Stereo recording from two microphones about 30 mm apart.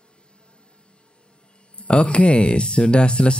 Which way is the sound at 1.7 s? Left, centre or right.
Left.